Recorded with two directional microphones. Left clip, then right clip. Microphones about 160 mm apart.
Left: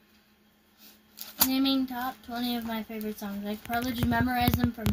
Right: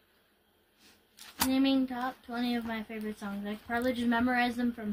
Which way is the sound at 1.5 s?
15° left (ahead or behind).